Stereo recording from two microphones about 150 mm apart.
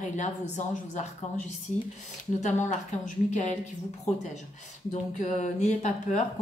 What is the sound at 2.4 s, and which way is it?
Speech, 55° left (ahead or behind).